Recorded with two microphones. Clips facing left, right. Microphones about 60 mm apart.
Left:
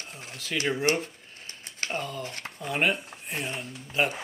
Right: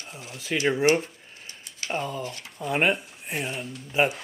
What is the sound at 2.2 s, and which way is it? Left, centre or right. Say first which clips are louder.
Speech: right 2 dB; left.